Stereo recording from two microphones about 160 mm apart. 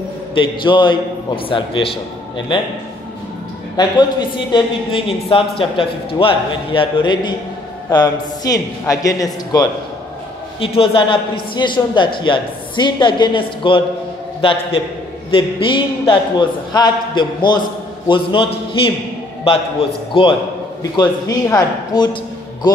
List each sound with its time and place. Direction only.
0.3 s a man's voice: 30° left (ahead or behind)
3.7 s a man's voice: 30° left (ahead or behind)
10.6 s a man's voice: 35° left (ahead or behind)